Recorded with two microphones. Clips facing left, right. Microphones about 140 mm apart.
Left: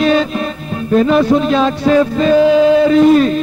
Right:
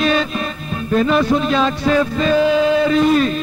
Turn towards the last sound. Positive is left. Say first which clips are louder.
# left 6 dB
turn(degrees=35)  # may be behind; listen again after turning